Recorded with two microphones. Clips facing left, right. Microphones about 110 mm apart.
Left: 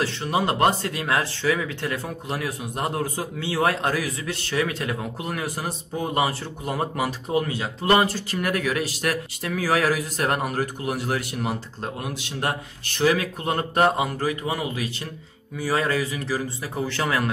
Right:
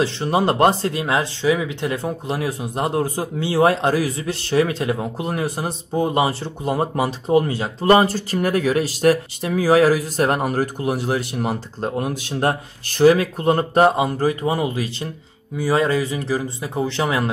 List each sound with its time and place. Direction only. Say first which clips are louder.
0.3 s speech: right 4 dB; 35° right (ahead or behind); by 17.3 s 20° right (ahead or behind)